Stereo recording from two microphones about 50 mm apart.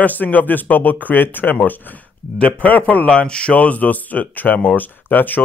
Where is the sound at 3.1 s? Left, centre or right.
Left.